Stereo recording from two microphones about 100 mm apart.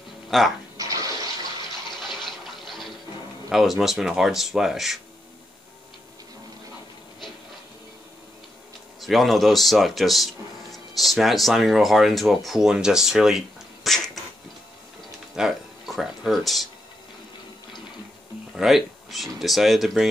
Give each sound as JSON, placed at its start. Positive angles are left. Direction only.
{"t": 0.3, "sound": "speech", "side_deg": 0}
{"t": 0.7, "sound": "water", "side_deg": -35}
{"t": 2.0, "sound": "water", "side_deg": 5}
{"t": 3.4, "sound": "speech", "side_deg": 0}
{"t": 9.0, "sound": "speech", "side_deg": 0}
{"t": 13.8, "sound": "a sound", "side_deg": 5}
{"t": 15.3, "sound": "a sound", "side_deg": -5}
{"t": 18.5, "sound": "speech", "side_deg": -5}